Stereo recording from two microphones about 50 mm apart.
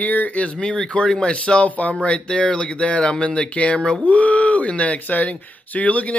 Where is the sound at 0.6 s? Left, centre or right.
Centre.